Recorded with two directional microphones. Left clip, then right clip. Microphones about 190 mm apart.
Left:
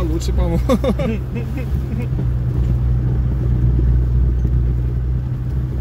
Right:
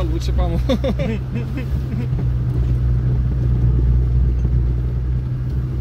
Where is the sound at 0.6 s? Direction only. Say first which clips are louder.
Left 3 dB; 30° left (ahead or behind).